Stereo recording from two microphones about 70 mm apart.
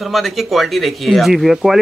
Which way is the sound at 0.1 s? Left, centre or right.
Centre.